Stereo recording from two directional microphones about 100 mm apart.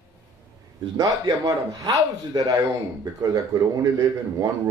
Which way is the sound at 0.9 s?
35° right (ahead or behind).